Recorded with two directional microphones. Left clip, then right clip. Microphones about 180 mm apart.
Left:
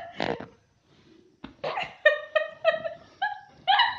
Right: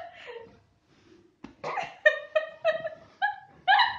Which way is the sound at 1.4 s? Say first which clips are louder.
Left 2 dB; 15° left (ahead or behind).